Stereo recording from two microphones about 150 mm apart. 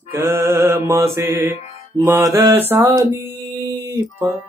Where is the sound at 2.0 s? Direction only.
20° right (ahead or behind).